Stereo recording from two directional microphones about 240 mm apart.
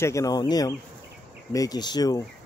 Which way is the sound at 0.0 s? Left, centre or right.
Centre.